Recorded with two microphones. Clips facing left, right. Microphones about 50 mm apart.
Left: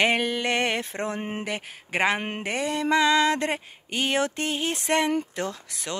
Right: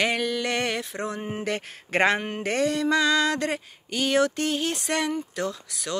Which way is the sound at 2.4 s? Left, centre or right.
Centre.